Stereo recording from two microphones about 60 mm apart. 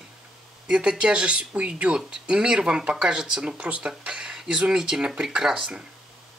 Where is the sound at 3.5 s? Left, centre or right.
Right.